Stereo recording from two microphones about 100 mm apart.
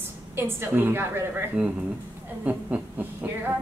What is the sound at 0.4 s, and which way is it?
Speech, 20° right (ahead or behind).